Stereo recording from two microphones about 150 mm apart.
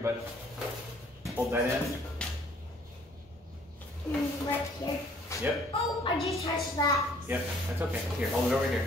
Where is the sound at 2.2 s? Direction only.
5° left (ahead or behind).